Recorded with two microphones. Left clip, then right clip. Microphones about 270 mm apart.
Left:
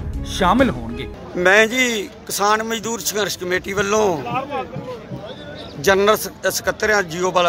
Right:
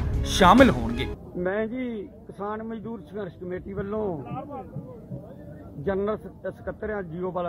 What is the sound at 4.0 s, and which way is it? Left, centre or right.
Speech, left.